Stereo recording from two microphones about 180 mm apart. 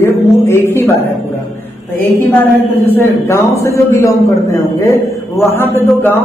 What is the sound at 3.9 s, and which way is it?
A man's voice, 15° left (ahead or behind).